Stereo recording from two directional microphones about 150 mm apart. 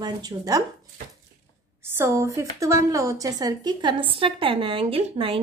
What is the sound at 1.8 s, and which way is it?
A woman's voice, 15° right (ahead or behind).